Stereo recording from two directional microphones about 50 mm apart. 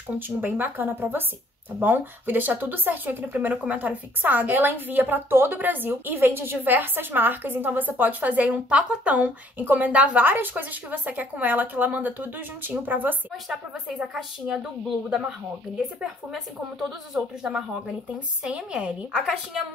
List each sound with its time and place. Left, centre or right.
0.4 s a woman's voice: right
6.1 s speech: right
10.2 s speech: right
14.1 s a woman's voice: centre
17.1 s a woman's voice: right
17.5 s a woman's voice: centre